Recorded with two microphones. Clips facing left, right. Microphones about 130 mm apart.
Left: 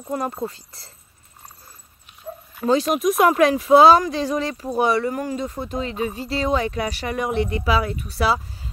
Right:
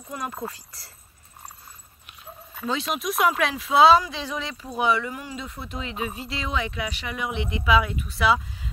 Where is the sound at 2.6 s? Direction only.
40° left (ahead or behind).